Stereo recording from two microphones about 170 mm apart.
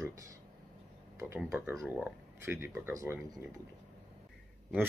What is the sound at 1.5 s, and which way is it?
Speech, 10° right (ahead or behind).